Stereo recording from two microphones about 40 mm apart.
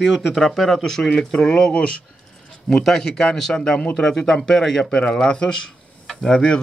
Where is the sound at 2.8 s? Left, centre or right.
Centre.